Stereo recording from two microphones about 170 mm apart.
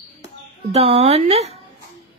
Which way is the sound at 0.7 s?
35° right (ahead or behind).